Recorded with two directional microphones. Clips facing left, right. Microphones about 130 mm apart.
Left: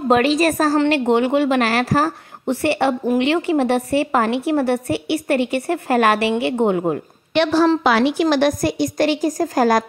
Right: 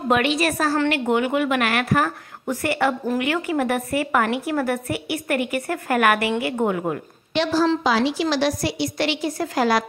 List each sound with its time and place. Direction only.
0.1 s a woman's voice: 35° left (ahead or behind)
0.7 s a woman's voice: 30° left (ahead or behind)
7.3 s a woman's voice: 65° left (ahead or behind); by 9.8 s 45° left (ahead or behind)